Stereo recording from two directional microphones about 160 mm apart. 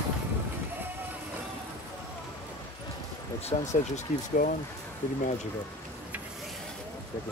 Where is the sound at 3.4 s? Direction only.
45° left (ahead or behind).